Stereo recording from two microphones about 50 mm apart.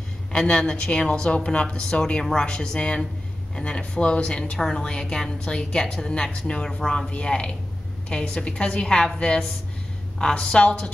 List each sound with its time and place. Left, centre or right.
0.4 s a woman's voice: centre
6.8 s a woman's voice: centre
7.1 s a woman's voice: left
10.1 s a woman's voice: centre